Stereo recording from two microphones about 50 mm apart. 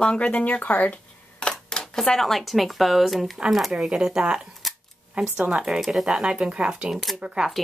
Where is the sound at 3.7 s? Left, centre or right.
Centre.